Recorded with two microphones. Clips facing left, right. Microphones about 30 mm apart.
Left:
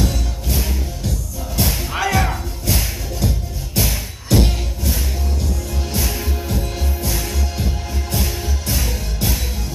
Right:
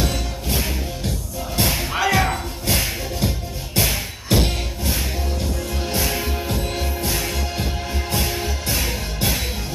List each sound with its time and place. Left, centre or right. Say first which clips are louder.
0.0 s music: left 1 dB; right
6.0 s music: right 1 dB; right